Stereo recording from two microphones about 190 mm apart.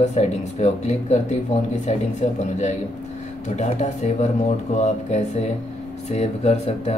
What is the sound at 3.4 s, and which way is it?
Speech, 35° left (ahead or behind).